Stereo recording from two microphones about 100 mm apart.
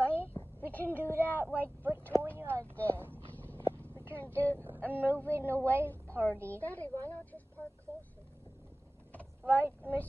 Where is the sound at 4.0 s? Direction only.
25° right (ahead or behind).